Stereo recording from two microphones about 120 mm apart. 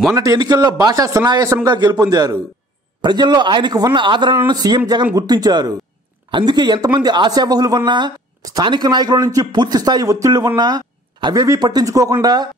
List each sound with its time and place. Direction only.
0.1 s a man's voice: 30° right (ahead or behind)